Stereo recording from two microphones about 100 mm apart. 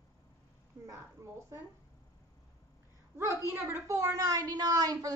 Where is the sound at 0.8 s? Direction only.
30° right (ahead or behind).